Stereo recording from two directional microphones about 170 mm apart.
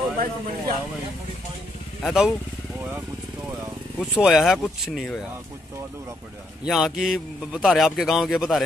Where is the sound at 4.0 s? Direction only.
Centre (ahead or behind).